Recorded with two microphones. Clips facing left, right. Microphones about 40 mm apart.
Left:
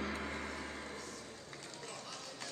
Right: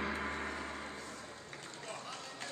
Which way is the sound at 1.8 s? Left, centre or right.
Right.